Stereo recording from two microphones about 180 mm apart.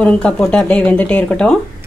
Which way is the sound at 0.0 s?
5° left (ahead or behind).